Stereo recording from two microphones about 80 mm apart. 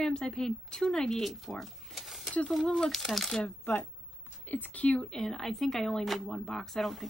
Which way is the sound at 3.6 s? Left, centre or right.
Left.